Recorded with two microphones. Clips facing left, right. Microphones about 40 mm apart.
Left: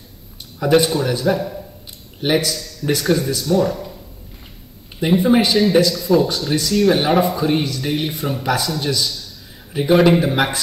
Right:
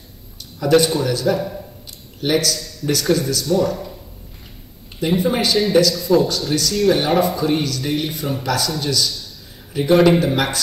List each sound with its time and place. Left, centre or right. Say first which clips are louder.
0.6 s speech: even; centre
3.7 s a sound: right 1 dB; centre
5.0 s speech: left 3 dB; centre